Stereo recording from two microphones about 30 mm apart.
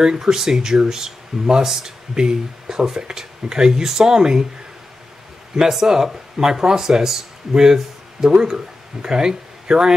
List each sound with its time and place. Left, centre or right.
0.0 s speech: centre
5.6 s speech: centre